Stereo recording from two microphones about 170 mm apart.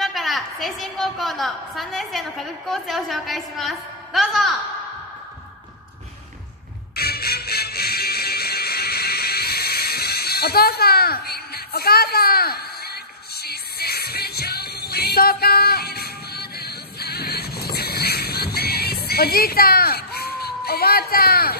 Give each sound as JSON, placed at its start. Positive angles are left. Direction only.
{"t": 0.0, "sound": "a woman's voice", "side_deg": 0}
{"t": 7.0, "sound": "music", "side_deg": 65}